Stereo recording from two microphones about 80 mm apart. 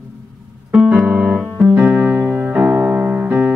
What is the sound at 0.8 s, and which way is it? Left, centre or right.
Piano, centre.